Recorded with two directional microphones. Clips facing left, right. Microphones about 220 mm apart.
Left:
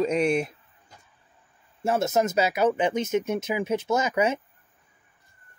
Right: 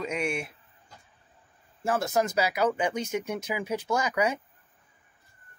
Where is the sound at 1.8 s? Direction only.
25° left (ahead or behind).